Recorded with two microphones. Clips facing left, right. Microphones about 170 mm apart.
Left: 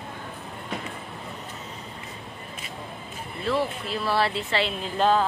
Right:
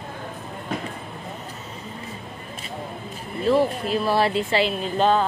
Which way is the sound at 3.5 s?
45° right (ahead or behind).